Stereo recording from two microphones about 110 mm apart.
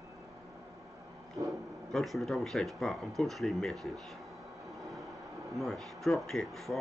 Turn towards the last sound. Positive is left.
turn(degrees=0)  # may be behind; listen again after turning